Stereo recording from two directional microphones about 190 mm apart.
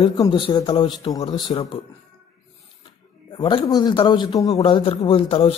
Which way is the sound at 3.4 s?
25° left (ahead or behind).